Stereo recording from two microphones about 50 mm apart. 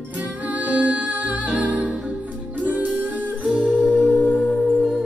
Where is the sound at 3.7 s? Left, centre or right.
Centre.